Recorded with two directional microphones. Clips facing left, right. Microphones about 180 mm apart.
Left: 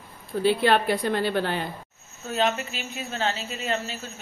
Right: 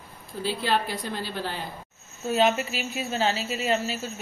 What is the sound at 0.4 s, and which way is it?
A woman's voice, 60° left (ahead or behind).